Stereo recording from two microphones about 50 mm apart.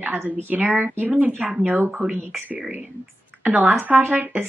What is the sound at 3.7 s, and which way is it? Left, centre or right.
Speech, right.